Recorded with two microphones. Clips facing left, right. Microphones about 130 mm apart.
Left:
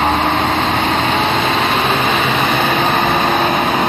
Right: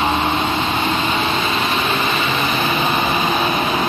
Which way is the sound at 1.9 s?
55° left (ahead or behind).